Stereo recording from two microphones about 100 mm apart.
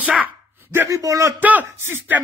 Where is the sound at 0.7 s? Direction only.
30° right (ahead or behind).